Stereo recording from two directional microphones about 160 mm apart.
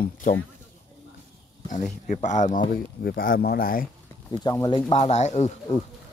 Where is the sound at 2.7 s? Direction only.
65° left (ahead or behind).